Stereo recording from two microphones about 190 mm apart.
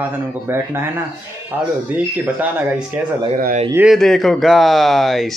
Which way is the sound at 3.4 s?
45° right (ahead or behind).